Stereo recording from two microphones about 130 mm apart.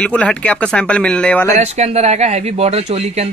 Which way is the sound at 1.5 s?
60° right (ahead or behind).